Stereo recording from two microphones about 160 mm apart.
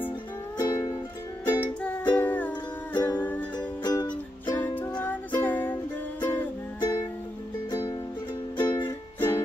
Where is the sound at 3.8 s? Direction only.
25° left (ahead or behind).